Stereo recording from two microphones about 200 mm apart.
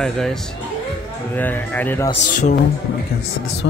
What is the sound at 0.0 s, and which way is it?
Speech, centre (ahead or behind).